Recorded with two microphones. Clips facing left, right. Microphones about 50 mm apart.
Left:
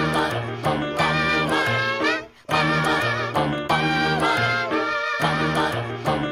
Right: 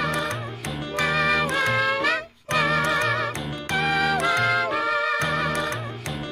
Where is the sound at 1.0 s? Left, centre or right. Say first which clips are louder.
Right 1 dB; centre.